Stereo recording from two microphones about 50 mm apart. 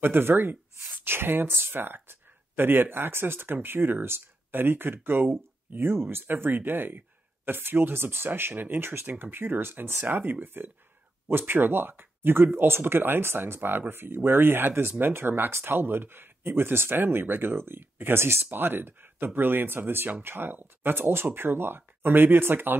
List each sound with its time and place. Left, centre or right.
0.0 s speech: right
10.0 s speech: right